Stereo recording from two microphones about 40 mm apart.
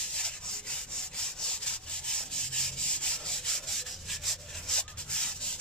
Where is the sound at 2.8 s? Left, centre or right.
Left.